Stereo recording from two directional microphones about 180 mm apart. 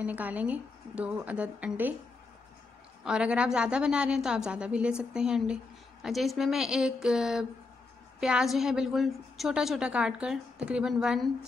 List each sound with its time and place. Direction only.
0.0 s a woman's voice: 10° right (ahead or behind)
3.0 s a woman's voice: 5° right (ahead or behind)